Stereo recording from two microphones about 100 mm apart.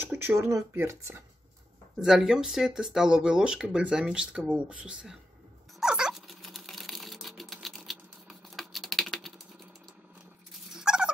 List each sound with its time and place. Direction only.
0.0 s speech: 20° right (ahead or behind)
0.5 s speech: 30° right (ahead or behind)
2.0 s speech: 5° right (ahead or behind)
5.8 s a sound: 10° right (ahead or behind)
10.7 s turkey: 5° right (ahead or behind)